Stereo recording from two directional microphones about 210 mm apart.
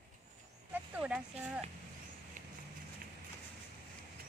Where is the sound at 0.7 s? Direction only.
5° right (ahead or behind).